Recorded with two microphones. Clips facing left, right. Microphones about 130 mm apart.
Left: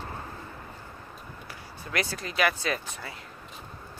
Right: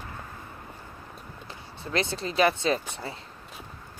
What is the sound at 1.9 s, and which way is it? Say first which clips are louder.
Speech: right 4 dB; 25° right (ahead or behind).